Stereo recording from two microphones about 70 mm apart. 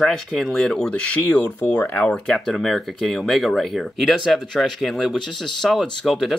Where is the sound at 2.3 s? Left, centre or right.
Centre.